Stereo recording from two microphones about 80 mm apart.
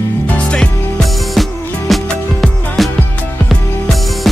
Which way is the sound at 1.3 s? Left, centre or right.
Centre.